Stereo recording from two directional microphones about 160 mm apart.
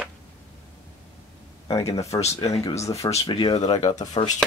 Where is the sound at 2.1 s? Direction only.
25° left (ahead or behind).